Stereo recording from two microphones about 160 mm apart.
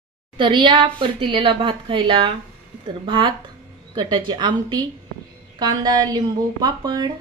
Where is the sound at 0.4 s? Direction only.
30° right (ahead or behind).